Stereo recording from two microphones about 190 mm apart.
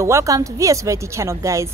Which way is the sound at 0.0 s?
15° right (ahead or behind).